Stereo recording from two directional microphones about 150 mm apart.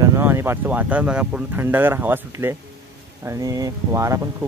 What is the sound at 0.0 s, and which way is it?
Speech, 15° right (ahead or behind).